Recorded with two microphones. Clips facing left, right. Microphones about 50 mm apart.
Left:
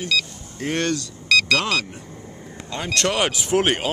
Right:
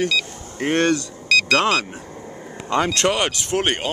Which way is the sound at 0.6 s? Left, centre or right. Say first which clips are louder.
Right 5 dB; right.